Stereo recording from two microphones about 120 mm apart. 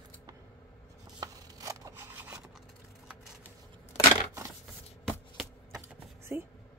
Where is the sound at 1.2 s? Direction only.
30° right (ahead or behind).